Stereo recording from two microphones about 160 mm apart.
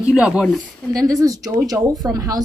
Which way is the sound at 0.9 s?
20° right (ahead or behind).